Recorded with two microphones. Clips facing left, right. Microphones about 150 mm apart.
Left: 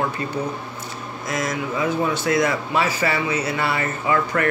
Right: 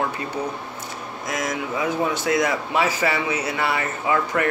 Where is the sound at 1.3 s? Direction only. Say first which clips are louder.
Left 1 dB; 15° right (ahead or behind).